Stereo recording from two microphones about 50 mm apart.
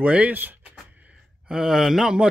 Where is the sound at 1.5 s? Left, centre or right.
Centre.